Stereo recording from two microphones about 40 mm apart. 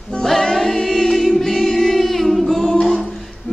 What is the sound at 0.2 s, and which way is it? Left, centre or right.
Music, centre.